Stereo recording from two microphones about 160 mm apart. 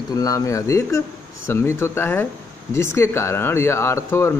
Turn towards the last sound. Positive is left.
turn(degrees=15)  # may be behind; listen again after turning